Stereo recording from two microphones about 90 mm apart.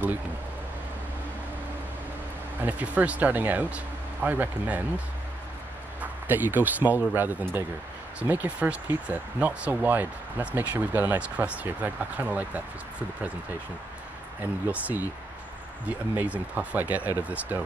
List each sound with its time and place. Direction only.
2.6 s speech: 20° right (ahead or behind)
14.4 s speech: 15° right (ahead or behind)